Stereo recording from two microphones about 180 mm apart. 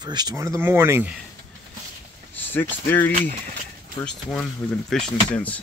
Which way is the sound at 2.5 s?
10° left (ahead or behind).